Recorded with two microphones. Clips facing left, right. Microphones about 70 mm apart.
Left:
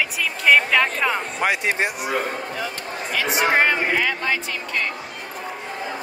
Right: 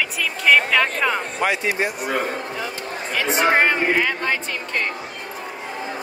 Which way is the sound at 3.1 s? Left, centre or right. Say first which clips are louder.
Right 1 dB; right.